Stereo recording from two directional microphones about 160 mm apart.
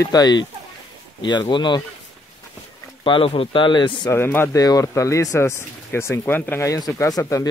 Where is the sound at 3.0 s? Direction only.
35° left (ahead or behind).